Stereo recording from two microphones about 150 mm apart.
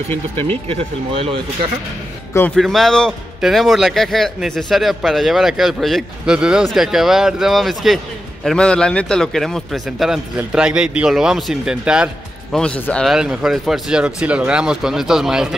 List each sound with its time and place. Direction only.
0.1 s speech: 10° left (ahead or behind)
0.7 s speech: 40° right (ahead or behind)
2.5 s speech: centre (ahead or behind)
12.5 s speech: 5° left (ahead or behind)